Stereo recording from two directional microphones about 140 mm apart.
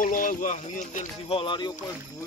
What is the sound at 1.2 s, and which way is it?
Speech, 40° left (ahead or behind).